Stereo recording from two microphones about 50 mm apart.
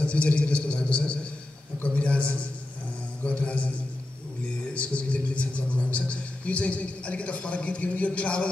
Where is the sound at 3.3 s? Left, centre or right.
Left.